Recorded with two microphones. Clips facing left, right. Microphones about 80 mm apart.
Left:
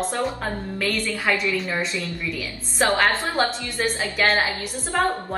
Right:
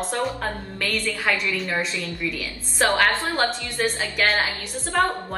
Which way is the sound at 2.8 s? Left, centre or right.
Centre.